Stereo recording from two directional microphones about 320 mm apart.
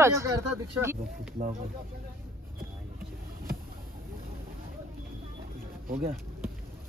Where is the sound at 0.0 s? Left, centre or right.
Centre.